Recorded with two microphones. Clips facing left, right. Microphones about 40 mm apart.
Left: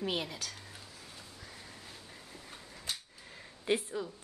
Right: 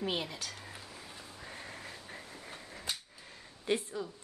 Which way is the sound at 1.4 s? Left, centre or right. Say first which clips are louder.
Right 8 dB; right.